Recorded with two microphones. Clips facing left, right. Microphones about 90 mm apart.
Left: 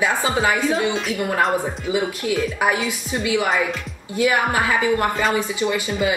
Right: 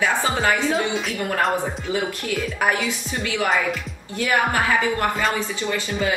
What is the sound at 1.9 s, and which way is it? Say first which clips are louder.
A man's voice: left 4 dB; 15° left (ahead or behind).